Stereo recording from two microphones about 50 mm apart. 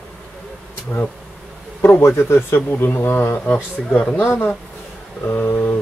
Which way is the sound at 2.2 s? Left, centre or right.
Left.